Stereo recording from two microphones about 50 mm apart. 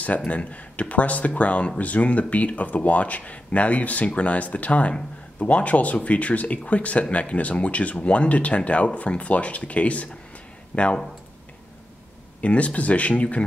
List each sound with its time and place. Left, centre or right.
0.2 s speech: left
12.4 s speech: left